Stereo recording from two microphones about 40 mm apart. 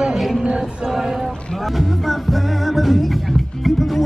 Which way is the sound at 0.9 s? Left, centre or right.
Centre.